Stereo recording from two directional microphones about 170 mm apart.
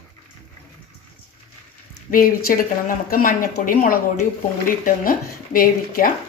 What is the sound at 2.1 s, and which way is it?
Speech, 55° left (ahead or behind).